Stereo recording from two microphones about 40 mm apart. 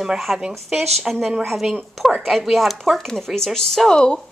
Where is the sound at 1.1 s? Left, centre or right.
Centre.